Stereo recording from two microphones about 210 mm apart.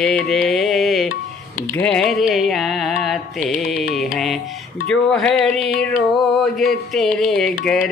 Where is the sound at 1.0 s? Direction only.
40° left (ahead or behind).